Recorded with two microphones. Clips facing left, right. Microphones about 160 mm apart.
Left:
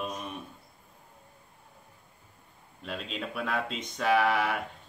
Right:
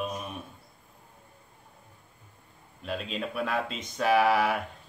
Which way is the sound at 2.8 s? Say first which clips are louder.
Right 3 dB; centre (ahead or behind).